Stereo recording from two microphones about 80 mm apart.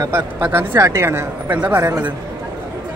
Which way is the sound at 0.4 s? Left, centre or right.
Right.